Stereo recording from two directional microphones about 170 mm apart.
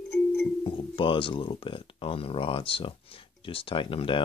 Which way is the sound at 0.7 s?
30° left (ahead or behind).